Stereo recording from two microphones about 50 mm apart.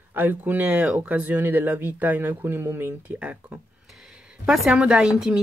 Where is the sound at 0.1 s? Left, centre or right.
Right.